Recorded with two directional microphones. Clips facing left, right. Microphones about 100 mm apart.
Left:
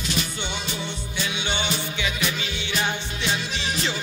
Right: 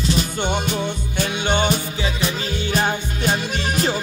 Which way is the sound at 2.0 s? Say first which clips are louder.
Right 4 dB; 35° right (ahead or behind).